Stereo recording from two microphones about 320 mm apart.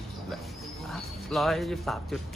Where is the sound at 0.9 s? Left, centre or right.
Centre.